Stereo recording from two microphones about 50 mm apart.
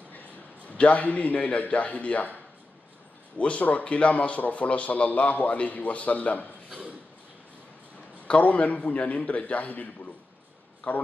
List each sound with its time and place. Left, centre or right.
0.7 s speech: left
3.3 s speech: left
8.3 s speech: left
10.8 s speech: left